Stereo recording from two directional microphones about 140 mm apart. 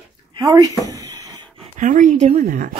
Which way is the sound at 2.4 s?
75° right (ahead or behind).